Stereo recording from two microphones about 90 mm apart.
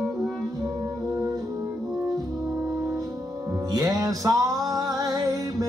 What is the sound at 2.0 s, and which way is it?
Brass instrument, 15° right (ahead or behind).